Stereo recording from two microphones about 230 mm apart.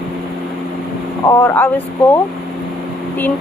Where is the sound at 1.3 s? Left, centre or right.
Centre.